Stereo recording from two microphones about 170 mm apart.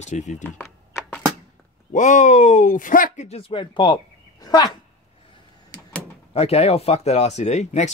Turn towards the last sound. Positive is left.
turn(degrees=40)  # may be behind; listen again after turning